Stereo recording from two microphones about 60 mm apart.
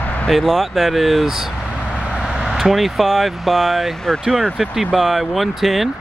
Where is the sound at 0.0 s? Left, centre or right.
Left.